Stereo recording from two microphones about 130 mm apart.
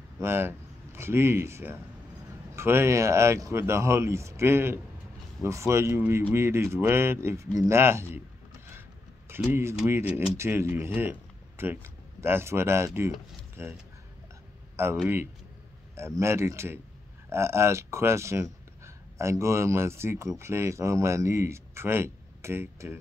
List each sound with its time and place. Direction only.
0.2 s speech: 20° right (ahead or behind)
9.5 s speech: 20° right (ahead or behind)
14.8 s speech: 20° right (ahead or behind)